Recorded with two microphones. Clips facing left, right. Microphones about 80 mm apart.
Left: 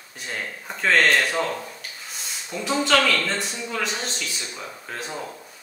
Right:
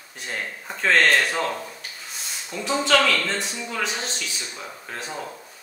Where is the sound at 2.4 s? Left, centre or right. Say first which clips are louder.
Even; centre.